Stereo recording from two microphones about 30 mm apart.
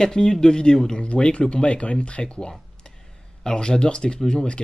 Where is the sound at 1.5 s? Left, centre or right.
Left.